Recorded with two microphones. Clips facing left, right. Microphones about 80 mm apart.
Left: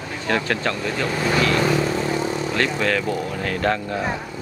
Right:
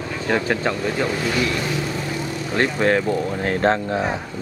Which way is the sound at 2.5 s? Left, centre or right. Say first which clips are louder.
Right 6 dB; right.